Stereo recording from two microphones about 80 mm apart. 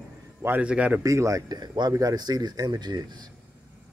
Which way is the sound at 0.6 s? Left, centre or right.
Centre.